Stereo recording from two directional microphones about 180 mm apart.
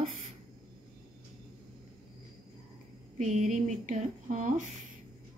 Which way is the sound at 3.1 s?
40° right (ahead or behind).